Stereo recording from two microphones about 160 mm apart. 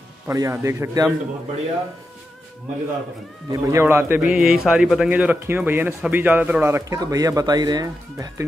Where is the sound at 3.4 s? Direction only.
20° right (ahead or behind).